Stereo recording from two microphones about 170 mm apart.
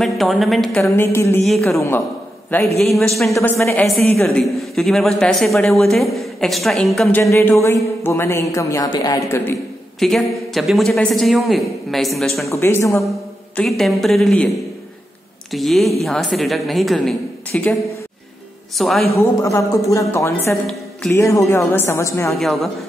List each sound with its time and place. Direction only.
0.0 s a woman's voice: centre (ahead or behind)
0.8 s a man's voice: 15° left (ahead or behind)
2.8 s a woman's voice: 5° left (ahead or behind)
3.3 s a man's voice: 15° left (ahead or behind)
9.9 s a woman's voice: centre (ahead or behind)
12.4 s a man's voice: 15° left (ahead or behind)
13.6 s a woman's voice: centre (ahead or behind)
15.5 s a woman's voice: centre (ahead or behind)
18.8 s a woman's voice: centre (ahead or behind)
19.1 s a man's voice: 15° left (ahead or behind)
22.4 s a woman's voice: centre (ahead or behind)